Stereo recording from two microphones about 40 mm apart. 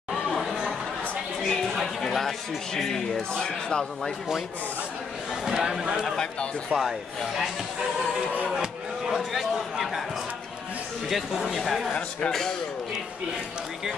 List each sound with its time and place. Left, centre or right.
0.1 s chatter: centre
1.4 s chatter: centre
1.7 s chatter: centre
2.0 s a man's voice: centre
5.3 s a man's voice: centre
9.1 s a sound: centre
11.5 s speech: centre
12.3 s a man's voice: centre